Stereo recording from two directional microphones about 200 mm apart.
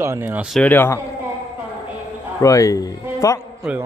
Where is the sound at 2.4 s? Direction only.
15° left (ahead or behind).